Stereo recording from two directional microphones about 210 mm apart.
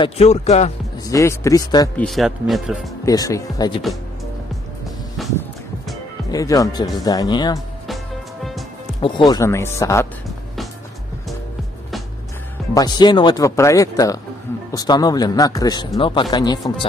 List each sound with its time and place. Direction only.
0.0 s speech: 30° left (ahead or behind)
1.0 s speech: 15° left (ahead or behind)
2.0 s speech: centre (ahead or behind)
3.1 s speech: 15° left (ahead or behind)
6.3 s speech: 15° left (ahead or behind)
9.0 s speech: 20° left (ahead or behind)
10.2 s music: centre (ahead or behind)
12.7 s speech: 20° left (ahead or behind)